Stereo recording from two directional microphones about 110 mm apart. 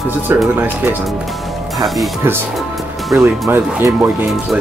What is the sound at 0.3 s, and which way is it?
Speech, 20° right (ahead or behind).